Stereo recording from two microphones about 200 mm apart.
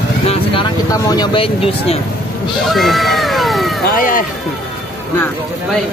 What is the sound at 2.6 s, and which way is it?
Cat, centre (ahead or behind).